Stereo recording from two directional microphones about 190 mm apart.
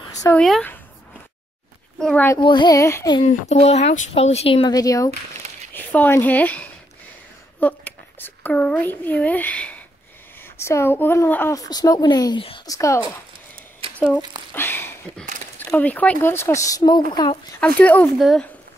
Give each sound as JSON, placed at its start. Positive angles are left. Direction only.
{"t": 0.4, "sound": "speech", "side_deg": 5}
{"t": 2.0, "sound": "a woman's voice", "side_deg": 5}
{"t": 2.2, "sound": "a child's voice", "side_deg": 20}
{"t": 3.3, "sound": "speech", "side_deg": 35}
{"t": 4.7, "sound": "a child's voice", "side_deg": 20}
{"t": 13.8, "sound": "a sound", "side_deg": -30}
{"t": 14.5, "sound": "a sound", "side_deg": 10}
{"t": 15.6, "sound": "a child's voice", "side_deg": 10}
{"t": 17.6, "sound": "a child's voice", "side_deg": 10}